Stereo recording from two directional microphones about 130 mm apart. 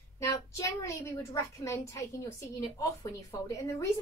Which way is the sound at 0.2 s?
25° left (ahead or behind).